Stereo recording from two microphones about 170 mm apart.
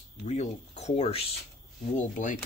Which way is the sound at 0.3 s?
40° left (ahead or behind).